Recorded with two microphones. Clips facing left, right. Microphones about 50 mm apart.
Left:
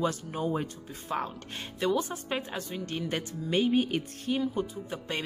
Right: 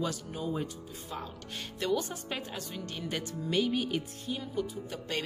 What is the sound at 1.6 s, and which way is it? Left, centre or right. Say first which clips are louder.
A woman's voice: left 3 dB; left.